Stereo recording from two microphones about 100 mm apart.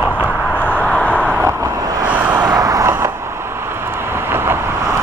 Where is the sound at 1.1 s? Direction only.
10° right (ahead or behind).